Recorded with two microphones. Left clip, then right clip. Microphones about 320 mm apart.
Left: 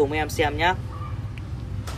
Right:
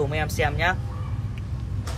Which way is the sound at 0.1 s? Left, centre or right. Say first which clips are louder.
Left 2 dB; centre.